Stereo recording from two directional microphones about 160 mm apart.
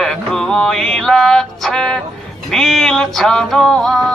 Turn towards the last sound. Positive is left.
turn(degrees=5)  # may be behind; listen again after turning